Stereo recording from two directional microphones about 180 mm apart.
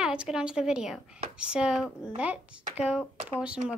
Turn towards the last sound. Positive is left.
turn(degrees=-5)  # may be behind; listen again after turning